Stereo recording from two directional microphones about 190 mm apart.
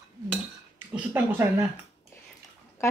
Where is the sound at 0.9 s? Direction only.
10° right (ahead or behind).